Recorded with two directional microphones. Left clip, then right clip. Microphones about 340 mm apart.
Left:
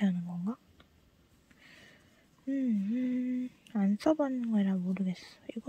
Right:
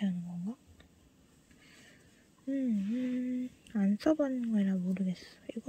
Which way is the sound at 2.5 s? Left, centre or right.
Centre.